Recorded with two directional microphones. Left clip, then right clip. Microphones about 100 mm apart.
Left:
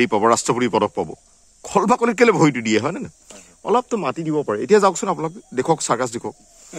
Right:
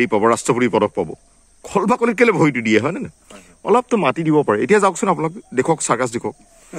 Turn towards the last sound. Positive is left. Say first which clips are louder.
# right 2 dB
turn(degrees=15)  # may be behind; listen again after turning